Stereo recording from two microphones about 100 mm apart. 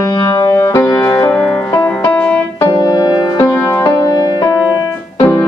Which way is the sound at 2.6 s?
30° left (ahead or behind).